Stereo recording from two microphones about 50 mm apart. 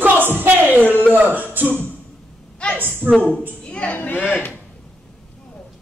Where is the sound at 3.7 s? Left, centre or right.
Left.